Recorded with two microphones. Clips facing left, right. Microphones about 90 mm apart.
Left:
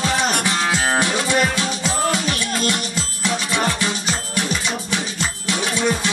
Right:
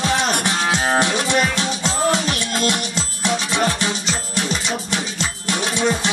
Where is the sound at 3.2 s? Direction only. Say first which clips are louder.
Right 1 dB; 20° right (ahead or behind).